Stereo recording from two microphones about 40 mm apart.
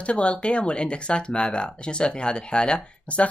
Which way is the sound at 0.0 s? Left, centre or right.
Left.